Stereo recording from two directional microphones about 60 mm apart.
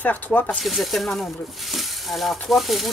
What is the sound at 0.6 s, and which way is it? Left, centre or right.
Speech, centre.